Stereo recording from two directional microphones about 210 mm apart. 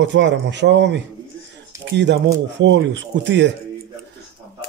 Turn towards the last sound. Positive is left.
turn(degrees=-60)  # may be behind; listen again after turning